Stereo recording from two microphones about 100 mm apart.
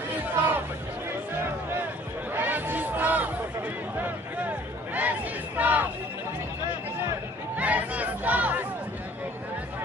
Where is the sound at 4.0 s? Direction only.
15° right (ahead or behind).